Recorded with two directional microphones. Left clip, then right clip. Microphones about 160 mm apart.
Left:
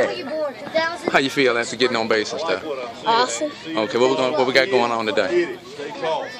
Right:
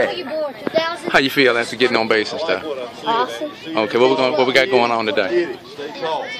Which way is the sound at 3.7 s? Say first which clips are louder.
Right 4 dB; 20° right (ahead or behind).